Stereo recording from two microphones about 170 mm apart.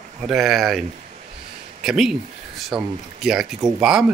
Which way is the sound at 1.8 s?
5° right (ahead or behind).